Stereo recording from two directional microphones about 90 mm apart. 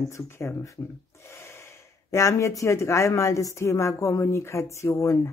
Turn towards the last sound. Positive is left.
turn(degrees=35)  # may be behind; listen again after turning